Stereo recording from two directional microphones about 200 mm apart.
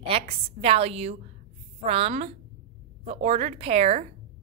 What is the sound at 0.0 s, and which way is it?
A woman's voice, 30° right (ahead or behind).